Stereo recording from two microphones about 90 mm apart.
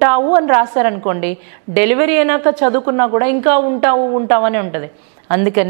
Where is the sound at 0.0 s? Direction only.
15° right (ahead or behind).